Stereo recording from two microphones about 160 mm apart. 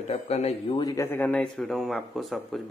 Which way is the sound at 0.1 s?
40° left (ahead or behind).